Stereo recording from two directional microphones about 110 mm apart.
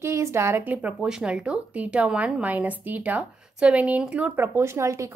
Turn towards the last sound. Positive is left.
turn(degrees=-25)  # may be behind; listen again after turning